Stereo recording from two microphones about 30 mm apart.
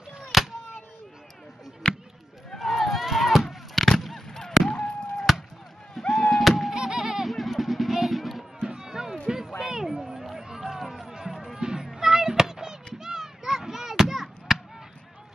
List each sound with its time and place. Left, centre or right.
0.3 s a sound: centre
1.8 s basketball bounce: left
2.6 s a sound: centre
3.7 s honk: centre
5.3 s chop: centre
5.9 s fireworks: centre
6.3 s music: centre
6.7 s vehicle: centre
8.5 s music: right
9.6 s a sound: centre
10.6 s run: centre
11.1 s music: centre
11.6 s children playing: right